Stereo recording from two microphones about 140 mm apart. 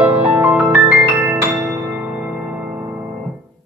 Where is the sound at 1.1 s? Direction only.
20° right (ahead or behind).